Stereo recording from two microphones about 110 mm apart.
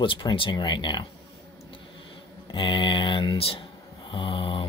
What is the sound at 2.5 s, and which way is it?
Speech, 50° left (ahead or behind).